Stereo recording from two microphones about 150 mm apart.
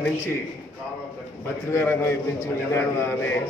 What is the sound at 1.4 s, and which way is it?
A man's voice, 15° left (ahead or behind).